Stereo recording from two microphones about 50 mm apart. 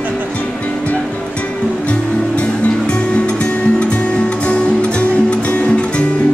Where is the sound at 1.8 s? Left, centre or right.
Left.